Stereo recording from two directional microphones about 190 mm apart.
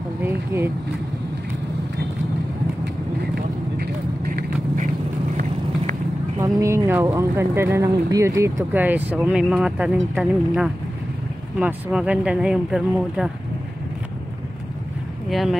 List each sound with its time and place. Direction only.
0.2 s vehicle: 10° right (ahead or behind)
4.2 s vehicle: 55° right (ahead or behind)
6.4 s speech: 15° right (ahead or behind)
15.2 s speech: centre (ahead or behind)